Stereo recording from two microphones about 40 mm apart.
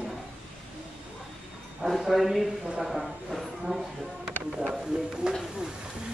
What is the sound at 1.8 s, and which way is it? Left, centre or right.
Speech, centre.